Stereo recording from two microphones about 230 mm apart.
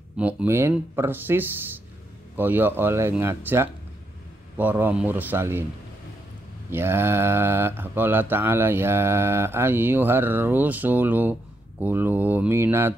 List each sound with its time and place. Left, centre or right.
0.2 s speech: centre
6.7 s speech: centre